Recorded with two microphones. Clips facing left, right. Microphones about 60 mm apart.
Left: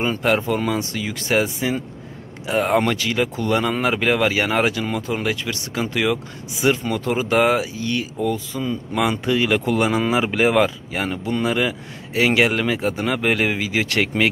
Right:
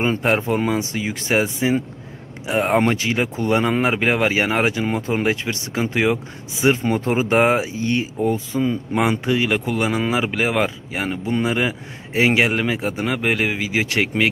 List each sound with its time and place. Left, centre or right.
0.0 s speech: right
9.2 s speech: centre